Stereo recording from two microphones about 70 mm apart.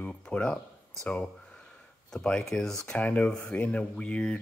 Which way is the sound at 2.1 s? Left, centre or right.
Centre.